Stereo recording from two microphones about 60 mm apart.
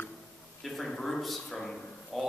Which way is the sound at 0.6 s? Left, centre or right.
Centre.